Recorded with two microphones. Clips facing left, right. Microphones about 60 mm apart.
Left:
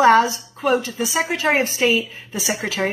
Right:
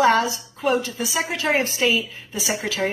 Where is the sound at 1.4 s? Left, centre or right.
Left.